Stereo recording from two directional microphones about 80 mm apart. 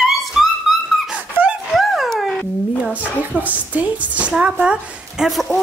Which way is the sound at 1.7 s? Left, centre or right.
Centre.